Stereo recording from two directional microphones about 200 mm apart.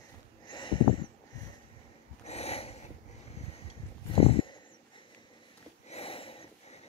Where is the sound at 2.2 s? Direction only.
30° left (ahead or behind).